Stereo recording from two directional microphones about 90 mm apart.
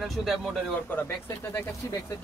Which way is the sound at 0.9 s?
20° left (ahead or behind).